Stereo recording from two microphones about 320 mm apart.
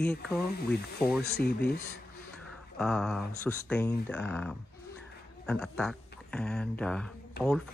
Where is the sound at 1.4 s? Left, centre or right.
Left.